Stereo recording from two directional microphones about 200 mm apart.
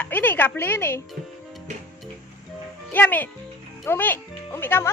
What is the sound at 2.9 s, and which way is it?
A woman's voice, 10° left (ahead or behind).